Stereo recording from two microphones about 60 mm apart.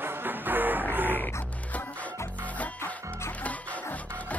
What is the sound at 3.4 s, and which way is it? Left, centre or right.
Music, left.